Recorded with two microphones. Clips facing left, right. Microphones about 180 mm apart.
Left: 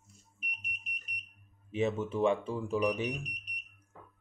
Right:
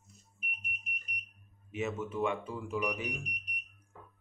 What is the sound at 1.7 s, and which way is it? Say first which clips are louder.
Speech: left 4 dB; 30° left (ahead or behind).